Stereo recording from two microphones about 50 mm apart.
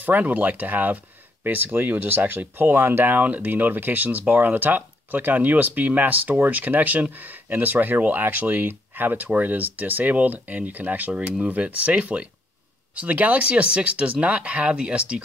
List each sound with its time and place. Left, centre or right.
0.0 s speech: right
3.2 s speech: right